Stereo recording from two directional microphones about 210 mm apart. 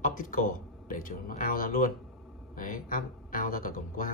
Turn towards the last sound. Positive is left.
turn(degrees=40)  # may be behind; listen again after turning